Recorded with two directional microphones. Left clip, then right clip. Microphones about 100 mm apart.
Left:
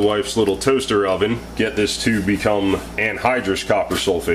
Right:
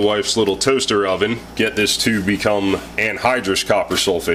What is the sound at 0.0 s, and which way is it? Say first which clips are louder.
Speech: right 1 dB; 35° right (ahead or behind).